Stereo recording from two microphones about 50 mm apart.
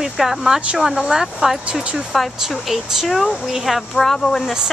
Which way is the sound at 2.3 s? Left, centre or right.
Centre.